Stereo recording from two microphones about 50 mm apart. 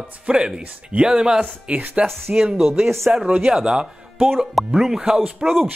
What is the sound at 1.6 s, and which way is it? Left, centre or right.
Speech, right.